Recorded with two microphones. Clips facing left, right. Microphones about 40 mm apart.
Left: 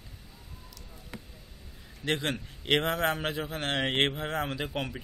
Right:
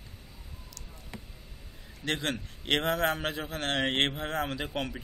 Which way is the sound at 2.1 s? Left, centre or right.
Centre.